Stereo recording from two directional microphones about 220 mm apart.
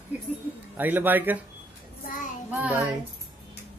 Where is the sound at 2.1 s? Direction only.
35° left (ahead or behind).